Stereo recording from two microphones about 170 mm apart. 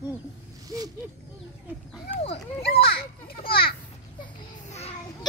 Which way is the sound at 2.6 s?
65° left (ahead or behind).